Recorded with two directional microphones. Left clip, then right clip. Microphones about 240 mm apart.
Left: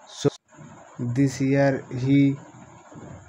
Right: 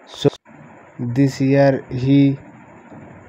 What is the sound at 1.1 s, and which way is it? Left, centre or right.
Speech, centre.